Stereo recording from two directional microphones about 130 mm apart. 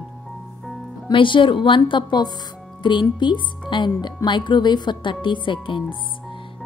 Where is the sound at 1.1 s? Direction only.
40° left (ahead or behind).